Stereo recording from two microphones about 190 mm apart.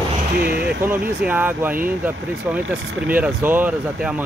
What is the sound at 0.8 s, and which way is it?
Speech, 10° right (ahead or behind).